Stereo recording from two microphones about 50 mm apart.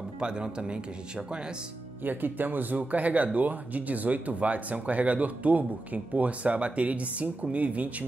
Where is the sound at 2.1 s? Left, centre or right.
Right.